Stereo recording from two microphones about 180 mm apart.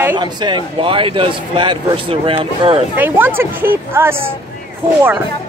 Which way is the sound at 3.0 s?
10° right (ahead or behind).